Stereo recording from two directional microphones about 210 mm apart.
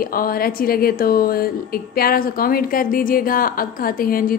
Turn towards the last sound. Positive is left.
turn(degrees=45)  # may be behind; listen again after turning